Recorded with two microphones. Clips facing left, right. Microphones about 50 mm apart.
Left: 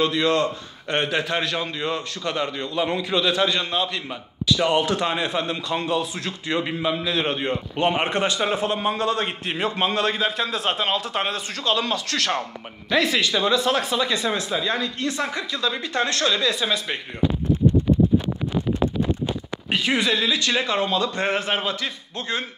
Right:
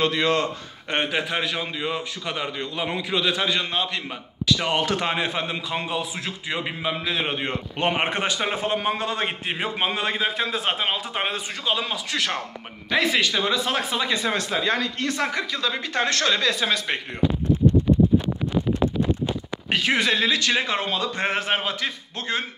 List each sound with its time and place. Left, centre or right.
0.0 s a man's voice: right
1.3 s a man's voice: centre
7.4 s a man's voice: right; by 12.4 s centre
12.9 s a man's voice: right
14.3 s speech: right
20.0 s a man's voice: right